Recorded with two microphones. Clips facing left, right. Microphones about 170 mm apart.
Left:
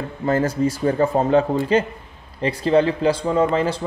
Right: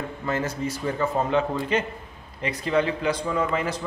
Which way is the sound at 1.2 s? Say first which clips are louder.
Left 6 dB; 35° left (ahead or behind).